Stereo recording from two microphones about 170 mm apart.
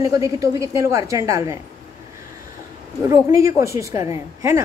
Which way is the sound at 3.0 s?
20° right (ahead or behind).